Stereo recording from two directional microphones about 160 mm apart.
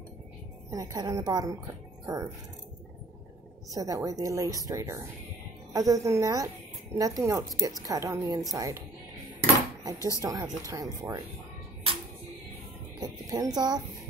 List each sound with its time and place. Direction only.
0.7 s speech: 20° right (ahead or behind)
3.7 s speech: 20° right (ahead or behind)
9.9 s speech: 20° left (ahead or behind)
10.2 s speech: 25° right (ahead or behind)
13.0 s speech: 25° right (ahead or behind)